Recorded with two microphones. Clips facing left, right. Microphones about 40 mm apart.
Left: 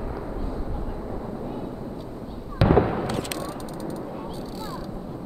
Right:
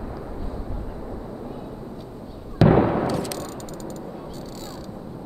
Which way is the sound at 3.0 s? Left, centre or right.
Left.